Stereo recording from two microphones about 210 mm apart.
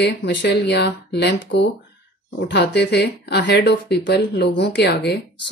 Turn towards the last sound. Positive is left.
turn(degrees=50)  # may be behind; listen again after turning